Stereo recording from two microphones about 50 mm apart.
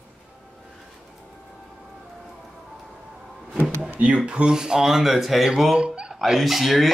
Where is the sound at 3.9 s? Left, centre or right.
Right.